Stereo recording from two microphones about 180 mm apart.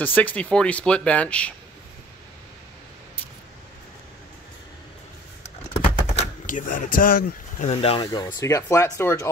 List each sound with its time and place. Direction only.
0.0 s speech: 10° left (ahead or behind)
5.4 s a sound: 35° left (ahead or behind)
6.4 s speech: 50° left (ahead or behind)
7.6 s speech: 35° left (ahead or behind); by 9.3 s 15° left (ahead or behind)